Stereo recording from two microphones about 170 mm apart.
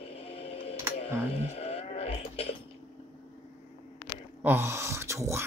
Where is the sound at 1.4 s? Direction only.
40° left (ahead or behind).